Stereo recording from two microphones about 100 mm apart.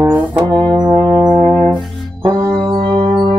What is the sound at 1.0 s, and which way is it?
Brass instrument, 45° right (ahead or behind).